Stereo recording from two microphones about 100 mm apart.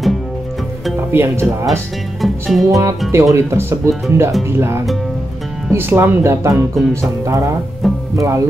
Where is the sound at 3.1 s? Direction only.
30° right (ahead or behind).